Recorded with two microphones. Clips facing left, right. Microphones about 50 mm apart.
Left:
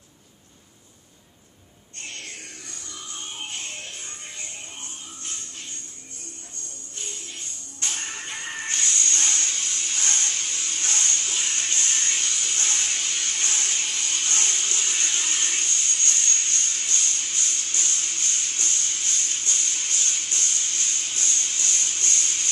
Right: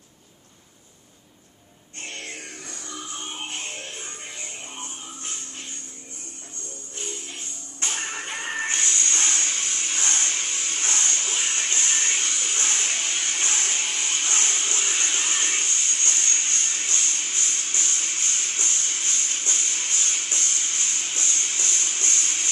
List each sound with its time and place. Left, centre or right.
2.0 s music: right
7.0 s music: right